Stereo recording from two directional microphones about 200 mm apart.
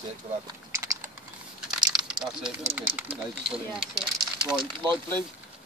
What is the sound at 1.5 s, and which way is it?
Typing, 5° right (ahead or behind).